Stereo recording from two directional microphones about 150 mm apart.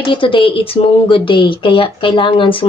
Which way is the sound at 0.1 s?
35° left (ahead or behind).